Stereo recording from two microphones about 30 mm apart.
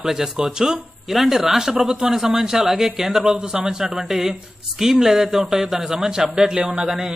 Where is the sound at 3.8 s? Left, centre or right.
Centre.